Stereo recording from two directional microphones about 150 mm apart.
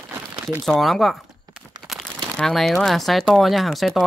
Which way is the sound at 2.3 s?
Centre (ahead or behind).